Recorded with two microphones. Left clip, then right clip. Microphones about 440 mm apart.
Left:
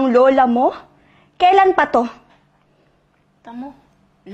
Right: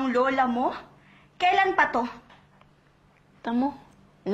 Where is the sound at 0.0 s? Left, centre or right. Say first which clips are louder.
Left 11 dB; left.